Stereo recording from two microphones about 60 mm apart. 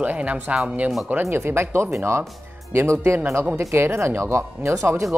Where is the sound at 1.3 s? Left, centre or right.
Right.